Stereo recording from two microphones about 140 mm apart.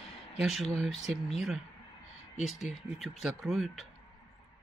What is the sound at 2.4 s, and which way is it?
Speech, centre (ahead or behind).